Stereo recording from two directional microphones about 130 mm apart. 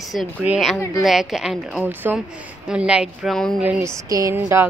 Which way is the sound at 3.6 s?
10° right (ahead or behind).